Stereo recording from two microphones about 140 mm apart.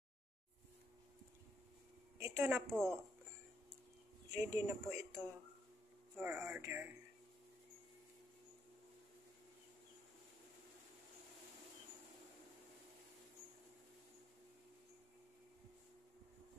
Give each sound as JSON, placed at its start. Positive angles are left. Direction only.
{"t": 2.1, "sound": "a woman's voice", "side_deg": -20}
{"t": 2.7, "sound": "speech", "side_deg": 5}
{"t": 4.3, "sound": "speech", "side_deg": -20}